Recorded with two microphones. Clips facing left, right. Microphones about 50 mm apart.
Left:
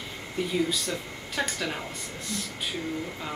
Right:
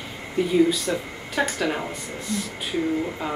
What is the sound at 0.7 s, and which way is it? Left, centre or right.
Speech, centre.